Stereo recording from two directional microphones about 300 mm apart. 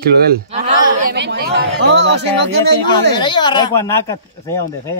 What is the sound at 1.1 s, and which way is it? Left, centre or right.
Speech, right.